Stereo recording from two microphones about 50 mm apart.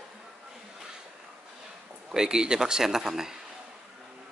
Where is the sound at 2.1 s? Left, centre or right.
Centre.